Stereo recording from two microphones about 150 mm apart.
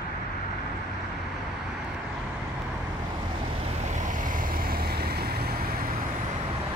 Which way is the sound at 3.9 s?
60° right (ahead or behind).